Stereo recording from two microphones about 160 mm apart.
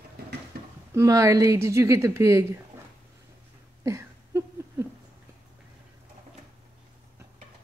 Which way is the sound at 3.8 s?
20° right (ahead or behind).